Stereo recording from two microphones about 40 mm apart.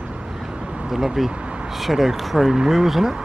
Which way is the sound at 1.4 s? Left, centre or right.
Right.